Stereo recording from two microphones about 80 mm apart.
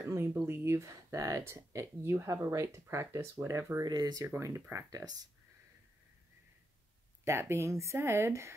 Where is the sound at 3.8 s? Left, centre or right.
Right.